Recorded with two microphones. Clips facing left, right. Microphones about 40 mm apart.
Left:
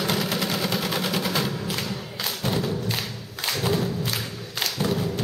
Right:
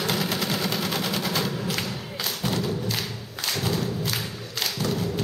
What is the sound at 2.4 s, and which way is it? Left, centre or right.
Thump, centre.